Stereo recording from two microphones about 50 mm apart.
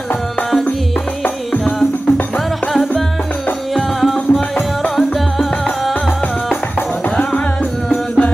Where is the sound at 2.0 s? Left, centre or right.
Left.